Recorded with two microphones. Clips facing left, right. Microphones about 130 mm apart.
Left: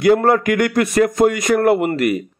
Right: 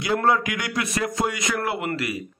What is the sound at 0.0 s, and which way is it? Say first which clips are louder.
Speech: left 8 dB; 50° left (ahead or behind).